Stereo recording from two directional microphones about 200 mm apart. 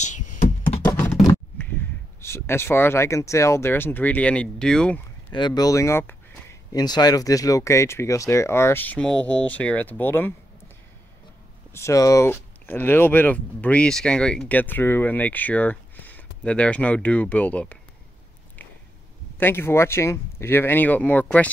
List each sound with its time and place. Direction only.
0.0 s music: 35° left (ahead or behind)
1.2 s speech: 10° left (ahead or behind)
5.3 s speech: 20° left (ahead or behind)
11.7 s speech: 15° left (ahead or behind)
19.3 s speech: 10° left (ahead or behind)